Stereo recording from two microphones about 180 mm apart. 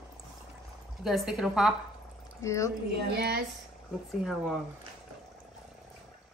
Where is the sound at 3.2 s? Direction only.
65° right (ahead or behind).